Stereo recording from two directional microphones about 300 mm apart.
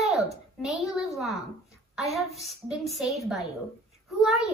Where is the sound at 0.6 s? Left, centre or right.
Centre.